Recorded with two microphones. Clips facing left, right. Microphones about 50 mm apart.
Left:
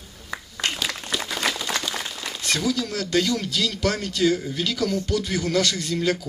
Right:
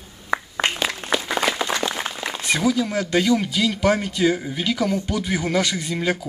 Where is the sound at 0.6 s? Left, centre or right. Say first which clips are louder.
Right 4 dB; right.